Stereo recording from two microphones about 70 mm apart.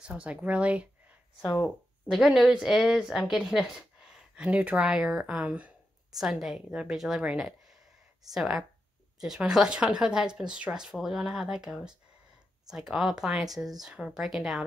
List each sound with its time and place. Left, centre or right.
0.0 s speech: centre
2.0 s speech: centre
4.4 s speech: centre
6.1 s speech: centre
8.3 s speech: centre